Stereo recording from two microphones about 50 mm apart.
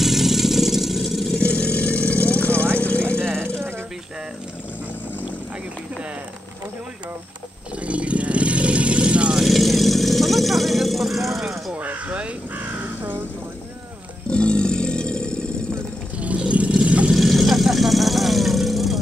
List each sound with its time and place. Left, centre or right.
0.0 s vehicle: centre
1.3 s vehicle: left
3.1 s vehicle: centre
7.8 s vehicle: right
9.4 s vehicle: centre
11.7 s crow: right
14.3 s vehicle: left
16.2 s vehicle: right
17.1 s vehicle: centre